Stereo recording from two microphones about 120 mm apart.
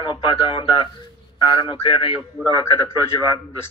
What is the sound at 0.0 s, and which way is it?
A man's voice, 40° left (ahead or behind).